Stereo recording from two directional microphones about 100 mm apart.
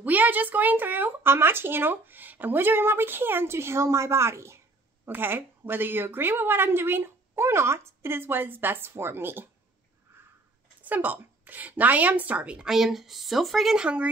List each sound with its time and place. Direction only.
0.0 s speech: 15° right (ahead or behind)
10.8 s a woman's voice: 15° right (ahead or behind)